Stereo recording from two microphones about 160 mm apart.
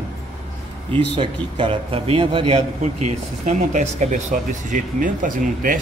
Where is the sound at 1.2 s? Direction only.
35° right (ahead or behind).